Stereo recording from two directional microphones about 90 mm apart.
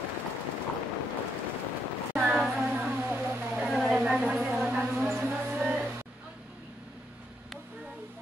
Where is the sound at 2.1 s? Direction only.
20° right (ahead or behind).